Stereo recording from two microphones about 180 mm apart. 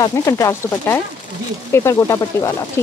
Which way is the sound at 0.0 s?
20° left (ahead or behind).